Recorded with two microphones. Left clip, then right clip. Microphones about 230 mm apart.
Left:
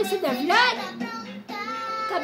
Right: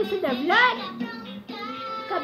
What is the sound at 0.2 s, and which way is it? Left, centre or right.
Speech, centre.